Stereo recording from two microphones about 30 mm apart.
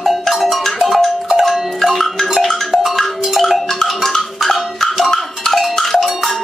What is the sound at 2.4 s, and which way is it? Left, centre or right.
Music, centre.